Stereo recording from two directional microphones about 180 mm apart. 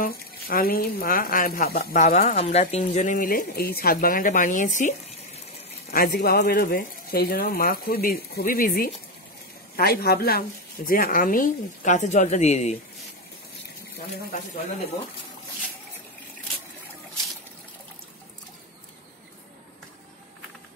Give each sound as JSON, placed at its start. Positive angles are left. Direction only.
{"t": 0.0, "sound": "speech", "side_deg": 55}
{"t": 2.1, "sound": "speech", "side_deg": 35}
{"t": 5.9, "sound": "speech", "side_deg": 60}